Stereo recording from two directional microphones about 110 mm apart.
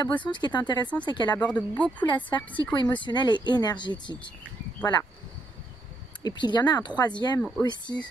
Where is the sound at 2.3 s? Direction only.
45° left (ahead or behind).